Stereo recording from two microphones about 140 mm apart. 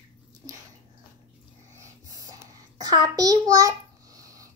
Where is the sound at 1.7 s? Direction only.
25° right (ahead or behind).